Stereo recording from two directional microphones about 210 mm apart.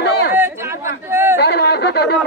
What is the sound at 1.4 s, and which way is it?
Speech, 50° left (ahead or behind).